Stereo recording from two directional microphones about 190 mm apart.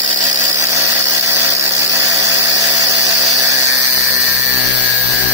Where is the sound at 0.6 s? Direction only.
10° right (ahead or behind).